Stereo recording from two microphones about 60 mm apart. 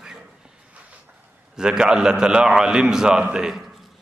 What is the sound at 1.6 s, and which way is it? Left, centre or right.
A man's voice, centre.